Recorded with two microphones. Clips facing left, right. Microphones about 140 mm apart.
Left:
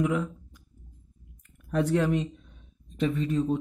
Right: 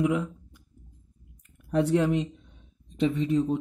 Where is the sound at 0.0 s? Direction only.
20° right (ahead or behind).